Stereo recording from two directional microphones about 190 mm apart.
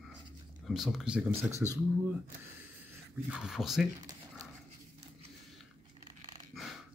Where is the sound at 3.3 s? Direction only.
5° right (ahead or behind).